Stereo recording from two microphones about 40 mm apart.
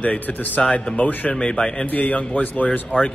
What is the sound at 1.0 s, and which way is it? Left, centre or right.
Speech, left.